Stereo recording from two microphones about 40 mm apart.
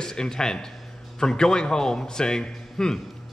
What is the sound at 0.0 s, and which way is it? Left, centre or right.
A man's voice, centre.